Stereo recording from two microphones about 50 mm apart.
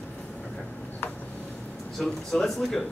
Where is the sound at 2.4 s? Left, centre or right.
Centre.